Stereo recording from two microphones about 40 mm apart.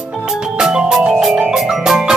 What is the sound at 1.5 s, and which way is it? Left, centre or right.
Music, centre.